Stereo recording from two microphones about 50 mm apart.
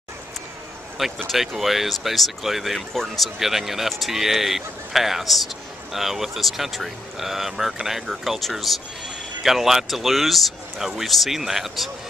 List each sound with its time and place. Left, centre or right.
0.9 s speech: centre
2.9 s speech: centre
3.3 s speech: centre